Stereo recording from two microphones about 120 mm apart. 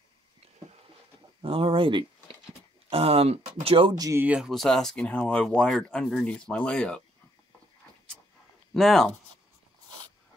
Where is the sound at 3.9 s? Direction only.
30° right (ahead or behind).